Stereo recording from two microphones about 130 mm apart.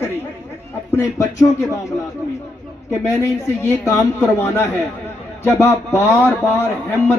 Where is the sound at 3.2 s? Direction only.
20° left (ahead or behind).